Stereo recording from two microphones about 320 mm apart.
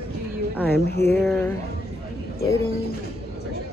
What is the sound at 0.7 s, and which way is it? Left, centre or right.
Speech, left.